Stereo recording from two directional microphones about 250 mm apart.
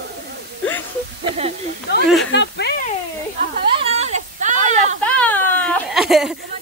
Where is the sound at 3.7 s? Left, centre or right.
Right.